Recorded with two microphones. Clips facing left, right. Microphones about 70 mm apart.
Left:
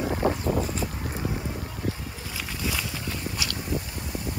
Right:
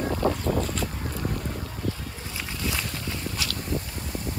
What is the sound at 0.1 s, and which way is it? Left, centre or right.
Vehicle, left.